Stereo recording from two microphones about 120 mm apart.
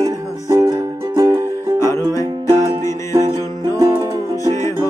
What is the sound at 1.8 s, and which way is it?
Music, 25° left (ahead or behind).